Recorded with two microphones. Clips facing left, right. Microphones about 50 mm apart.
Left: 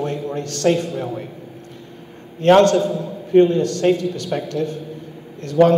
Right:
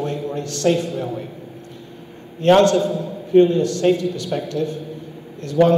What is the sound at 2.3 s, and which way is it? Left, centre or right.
A man's voice, left.